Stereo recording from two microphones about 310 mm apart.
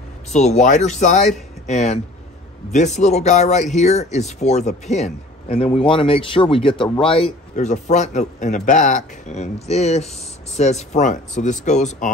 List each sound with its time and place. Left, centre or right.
0.3 s speech: left
3.0 s speech: left